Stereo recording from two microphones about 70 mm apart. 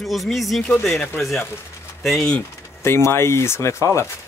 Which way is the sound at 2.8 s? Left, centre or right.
Left.